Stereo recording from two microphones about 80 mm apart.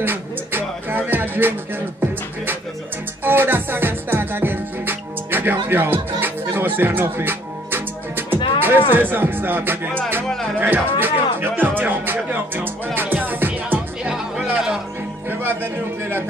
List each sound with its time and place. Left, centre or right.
0.0 s music: right
3.3 s music: right
8.5 s speech: right
10.6 s music: right
14.0 s music: centre
15.2 s speech: right